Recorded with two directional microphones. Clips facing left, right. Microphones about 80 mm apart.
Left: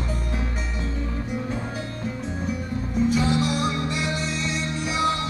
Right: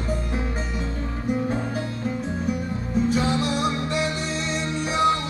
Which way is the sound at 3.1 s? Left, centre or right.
Right.